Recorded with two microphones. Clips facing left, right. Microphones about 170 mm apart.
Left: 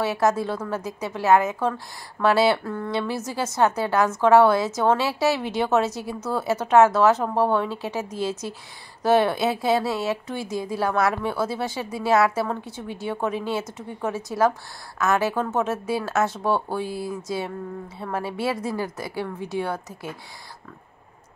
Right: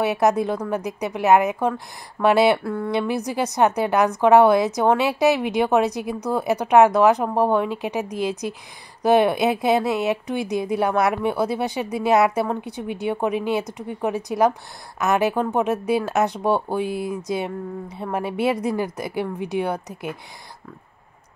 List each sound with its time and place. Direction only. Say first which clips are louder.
0.0 s speech: right 3 dB; 15° right (ahead or behind)